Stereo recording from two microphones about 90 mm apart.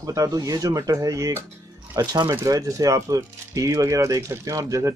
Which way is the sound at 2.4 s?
40° right (ahead or behind).